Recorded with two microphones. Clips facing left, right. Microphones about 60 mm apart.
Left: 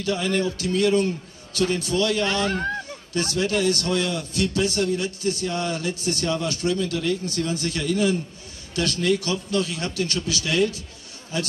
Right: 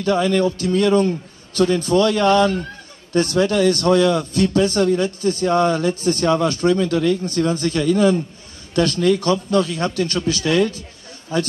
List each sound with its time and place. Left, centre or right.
0.0 s a man's voice: right